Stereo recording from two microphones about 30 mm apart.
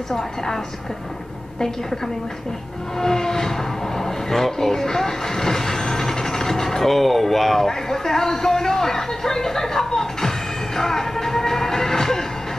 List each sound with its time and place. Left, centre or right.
0.1 s a woman's voice: centre
3.0 s speech: centre
9.9 s music: centre